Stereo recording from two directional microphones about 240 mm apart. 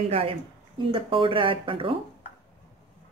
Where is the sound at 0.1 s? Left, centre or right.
Right.